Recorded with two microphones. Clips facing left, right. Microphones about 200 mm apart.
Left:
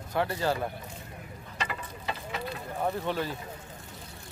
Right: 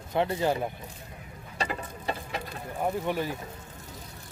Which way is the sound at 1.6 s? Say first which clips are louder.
Right 4 dB; 40° right (ahead or behind).